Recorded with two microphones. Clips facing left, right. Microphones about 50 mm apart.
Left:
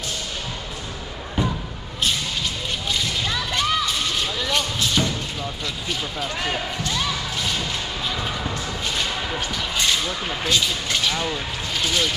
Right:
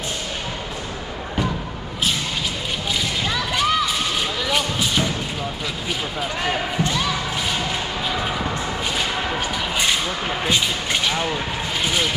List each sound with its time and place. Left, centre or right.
3.0 s a sound: centre
6.4 s basketball bounce: centre
7.0 s thump: centre
8.1 s a sound: centre
8.9 s whip: centre
11.8 s vehicle: centre